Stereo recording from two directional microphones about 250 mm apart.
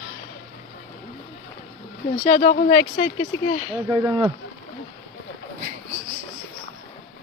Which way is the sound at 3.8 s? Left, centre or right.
Centre.